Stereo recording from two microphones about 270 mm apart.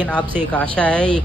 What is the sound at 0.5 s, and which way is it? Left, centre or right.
Speech, centre.